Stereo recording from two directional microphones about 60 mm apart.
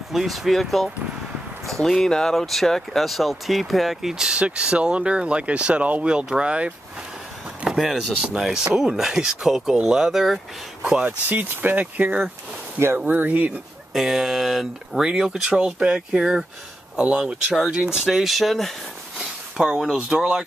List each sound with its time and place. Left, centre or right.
0.1 s speech: centre
7.7 s speech: centre
11.0 s speech: right
12.7 s speech: right
13.9 s speech: centre
19.1 s a sound: centre
20.1 s speech: centre